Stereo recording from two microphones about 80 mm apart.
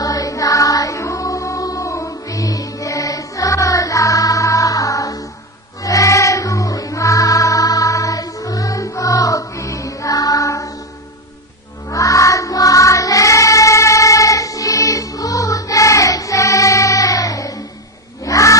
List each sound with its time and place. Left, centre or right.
0.0 s music: left
11.9 s child singing: left
18.2 s a sound: left